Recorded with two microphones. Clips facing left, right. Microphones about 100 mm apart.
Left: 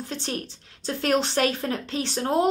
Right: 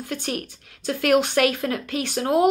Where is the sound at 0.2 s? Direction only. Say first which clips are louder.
Right 2 dB; 30° left (ahead or behind).